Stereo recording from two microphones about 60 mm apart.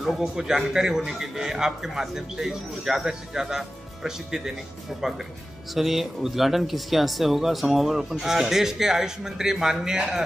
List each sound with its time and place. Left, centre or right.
0.0 s a man's voice: centre
5.8 s speech: centre